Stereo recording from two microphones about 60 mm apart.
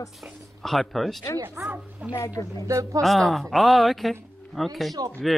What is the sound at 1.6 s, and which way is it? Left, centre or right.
Speech, right.